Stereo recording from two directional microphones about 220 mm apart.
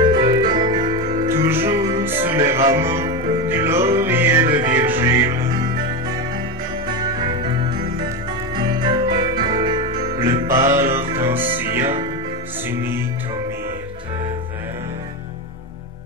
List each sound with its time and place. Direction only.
0.0 s music: 20° right (ahead or behind)
8.5 s music: 20° right (ahead or behind)
12.6 s music: 10° right (ahead or behind)